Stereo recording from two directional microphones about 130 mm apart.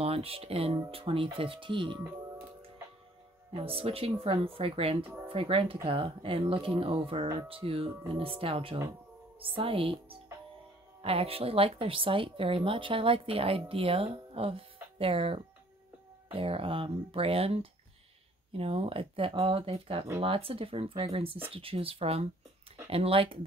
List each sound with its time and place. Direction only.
0.0 s a woman's voice: 50° right (ahead or behind)
3.6 s a woman's voice: 45° right (ahead or behind)
5.0 s speech: 15° right (ahead or behind)
5.3 s a woman's voice: 45° right (ahead or behind)